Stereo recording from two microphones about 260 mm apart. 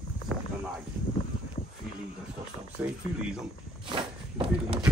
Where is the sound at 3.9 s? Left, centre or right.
Centre.